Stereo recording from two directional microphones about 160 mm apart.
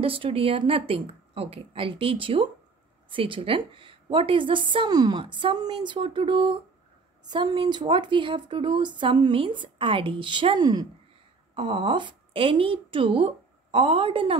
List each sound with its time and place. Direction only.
0.0 s a woman's voice: 35° right (ahead or behind)